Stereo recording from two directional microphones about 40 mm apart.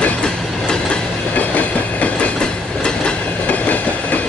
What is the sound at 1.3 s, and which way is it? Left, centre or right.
Train, left.